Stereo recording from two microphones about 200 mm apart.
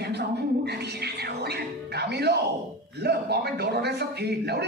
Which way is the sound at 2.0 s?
55° right (ahead or behind).